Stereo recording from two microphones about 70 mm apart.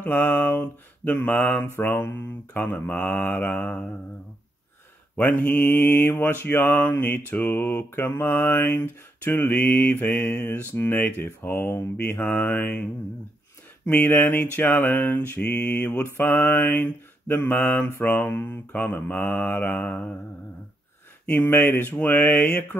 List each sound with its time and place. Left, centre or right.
0.0 s mantra: left
5.1 s mantra: left
13.8 s mantra: left
21.3 s mantra: left